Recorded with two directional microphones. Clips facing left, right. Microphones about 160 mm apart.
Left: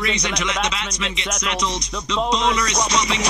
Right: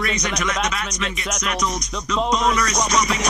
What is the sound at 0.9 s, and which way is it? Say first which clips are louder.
Music: even; 25° left (ahead or behind).